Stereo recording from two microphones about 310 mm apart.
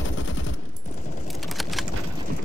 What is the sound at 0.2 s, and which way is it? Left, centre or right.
Fusillade, left.